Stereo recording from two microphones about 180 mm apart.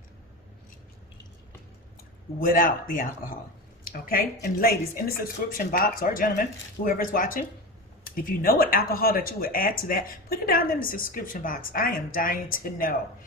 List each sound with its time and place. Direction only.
2.4 s speech: 50° left (ahead or behind)